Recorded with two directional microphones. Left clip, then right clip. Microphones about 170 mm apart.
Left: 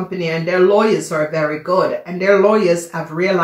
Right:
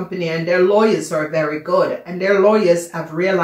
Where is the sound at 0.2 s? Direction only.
30° left (ahead or behind).